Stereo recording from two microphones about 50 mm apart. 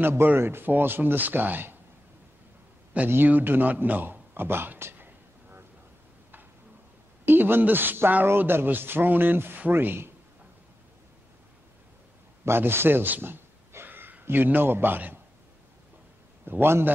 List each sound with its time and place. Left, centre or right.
0.0 s speech: right
2.9 s speech: right
3.3 s speech: right
4.9 s a sound: right
7.2 s speech: right
12.4 s a sound: right
14.2 s speech: right
16.4 s speech: right